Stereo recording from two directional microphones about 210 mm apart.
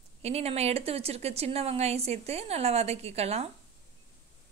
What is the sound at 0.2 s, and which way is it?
A woman's voice, 30° right (ahead or behind).